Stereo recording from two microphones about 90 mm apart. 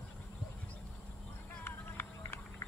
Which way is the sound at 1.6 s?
25° left (ahead or behind).